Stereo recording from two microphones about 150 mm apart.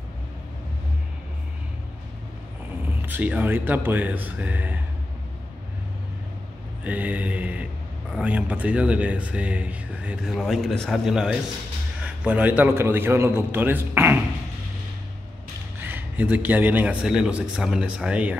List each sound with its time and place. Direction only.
3.0 s speech: 10° right (ahead or behind)
6.8 s speech: 10° right (ahead or behind)
15.8 s speech: 10° right (ahead or behind)